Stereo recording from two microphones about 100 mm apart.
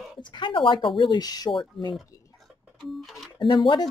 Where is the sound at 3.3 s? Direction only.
50° left (ahead or behind).